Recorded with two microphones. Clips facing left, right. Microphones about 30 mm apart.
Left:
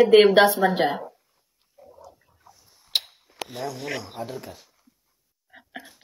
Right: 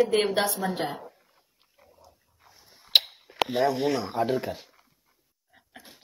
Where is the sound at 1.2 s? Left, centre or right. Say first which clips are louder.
Right 5 dB; right.